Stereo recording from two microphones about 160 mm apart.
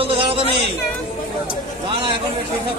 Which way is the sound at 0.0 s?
35° right (ahead or behind).